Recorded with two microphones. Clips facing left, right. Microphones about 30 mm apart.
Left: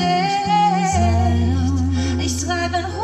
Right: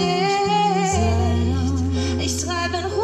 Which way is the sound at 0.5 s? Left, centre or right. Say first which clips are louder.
Left 2 dB; right.